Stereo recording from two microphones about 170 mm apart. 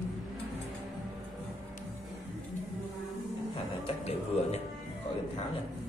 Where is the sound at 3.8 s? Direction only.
40° left (ahead or behind).